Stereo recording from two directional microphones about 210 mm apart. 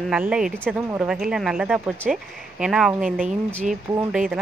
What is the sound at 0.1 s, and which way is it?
Speech, 5° right (ahead or behind).